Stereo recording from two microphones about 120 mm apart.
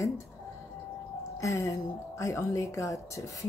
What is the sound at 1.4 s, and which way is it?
A woman's voice, 25° left (ahead or behind).